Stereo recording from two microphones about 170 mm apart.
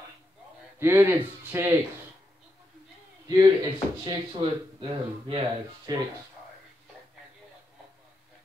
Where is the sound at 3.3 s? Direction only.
20° right (ahead or behind).